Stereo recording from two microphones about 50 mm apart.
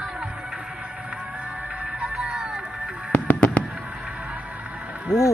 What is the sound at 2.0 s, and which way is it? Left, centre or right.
Music, right.